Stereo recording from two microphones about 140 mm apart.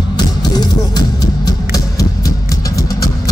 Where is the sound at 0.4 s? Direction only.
30° left (ahead or behind).